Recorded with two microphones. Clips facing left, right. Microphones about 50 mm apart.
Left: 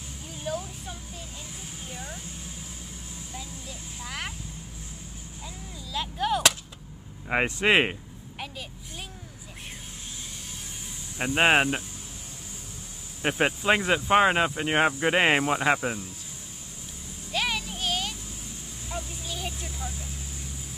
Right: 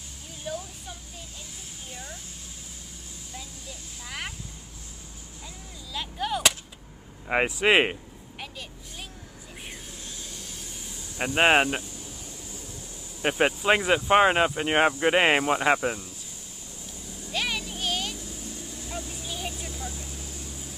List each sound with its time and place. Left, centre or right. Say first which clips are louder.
0.4 s a sound: left 2 dB; centre
4.0 s vehicle: left 1 dB; centre
5.9 s whip: left 3 dB; centre
7.2 s a sound: right 1 dB; centre
11.1 s speech: right 1 dB; centre
13.2 s speech: right 1 dB; centre
17.3 s child singing: left 1 dB; centre
19.2 s vehicle: even; centre